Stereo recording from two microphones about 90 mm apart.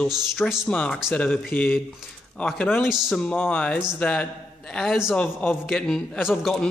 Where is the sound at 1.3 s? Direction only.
20° left (ahead or behind).